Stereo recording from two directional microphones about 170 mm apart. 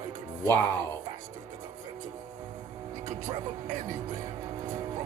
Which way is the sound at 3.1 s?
50° right (ahead or behind).